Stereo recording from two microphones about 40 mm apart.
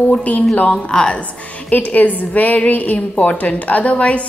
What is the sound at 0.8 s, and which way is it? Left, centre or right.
Speech, left.